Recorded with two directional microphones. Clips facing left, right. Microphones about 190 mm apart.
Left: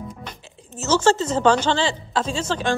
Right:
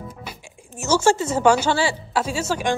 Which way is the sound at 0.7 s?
10° right (ahead or behind).